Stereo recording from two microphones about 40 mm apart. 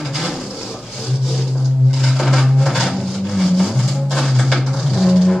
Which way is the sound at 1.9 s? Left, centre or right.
Centre.